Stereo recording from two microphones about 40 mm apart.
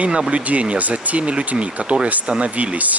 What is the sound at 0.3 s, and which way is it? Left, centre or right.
Speech, right.